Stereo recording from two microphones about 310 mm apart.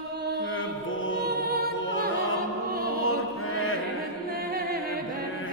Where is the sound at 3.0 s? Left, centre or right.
Left.